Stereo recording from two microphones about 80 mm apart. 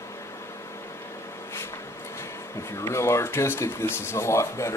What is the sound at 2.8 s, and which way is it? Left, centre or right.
Speech, left.